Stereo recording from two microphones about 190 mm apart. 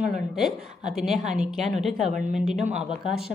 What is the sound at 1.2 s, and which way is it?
Speech, 35° right (ahead or behind).